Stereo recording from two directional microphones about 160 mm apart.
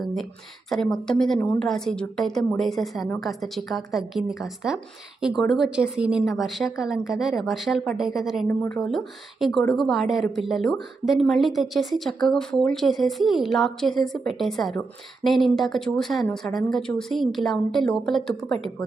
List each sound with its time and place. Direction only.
0.7 s a woman's voice: 5° left (ahead or behind)
5.2 s a woman's voice: centre (ahead or behind)
8.5 s speech: 10° left (ahead or behind)
8.8 s a woman's voice: centre (ahead or behind)